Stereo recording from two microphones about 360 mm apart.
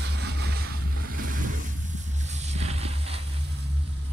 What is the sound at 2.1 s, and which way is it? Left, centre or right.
Vehicle, centre.